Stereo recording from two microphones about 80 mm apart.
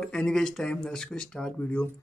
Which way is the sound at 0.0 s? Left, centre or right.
Centre.